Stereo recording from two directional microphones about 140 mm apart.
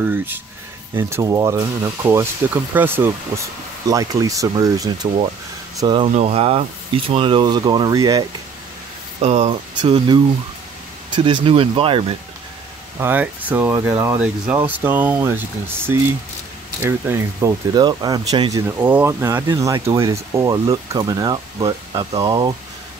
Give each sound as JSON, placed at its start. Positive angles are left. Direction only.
{"t": 0.0, "sound": "speech", "side_deg": -15}
{"t": 6.1, "sound": "speech", "side_deg": -45}
{"t": 9.2, "sound": "speech", "side_deg": -50}
{"t": 9.8, "sound": "speech", "side_deg": -35}
{"t": 13.0, "sound": "speech", "side_deg": -10}
{"t": 16.8, "sound": "speech", "side_deg": -15}
{"t": 17.7, "sound": "speech", "side_deg": -30}
{"t": 18.8, "sound": "speech", "side_deg": -15}